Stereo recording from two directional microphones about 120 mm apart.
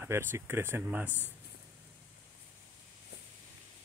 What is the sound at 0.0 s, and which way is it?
Speech, 20° right (ahead or behind).